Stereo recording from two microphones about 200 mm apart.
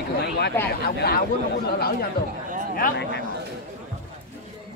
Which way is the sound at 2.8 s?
50° left (ahead or behind).